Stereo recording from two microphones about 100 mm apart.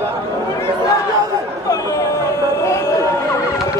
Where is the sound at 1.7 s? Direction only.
35° left (ahead or behind).